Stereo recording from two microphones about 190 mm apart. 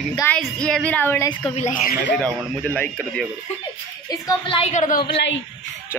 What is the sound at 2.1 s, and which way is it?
Speech, 5° left (ahead or behind).